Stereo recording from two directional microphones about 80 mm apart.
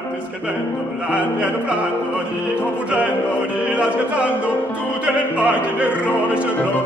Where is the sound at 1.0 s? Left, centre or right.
Centre.